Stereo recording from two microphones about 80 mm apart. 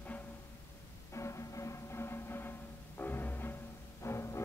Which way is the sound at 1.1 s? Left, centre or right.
Left.